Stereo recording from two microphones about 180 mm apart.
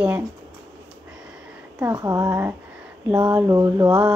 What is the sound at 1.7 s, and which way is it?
Speech, 20° right (ahead or behind).